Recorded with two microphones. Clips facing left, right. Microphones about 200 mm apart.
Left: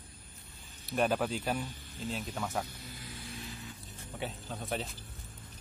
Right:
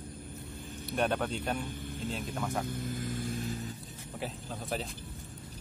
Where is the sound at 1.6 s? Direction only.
55° right (ahead or behind).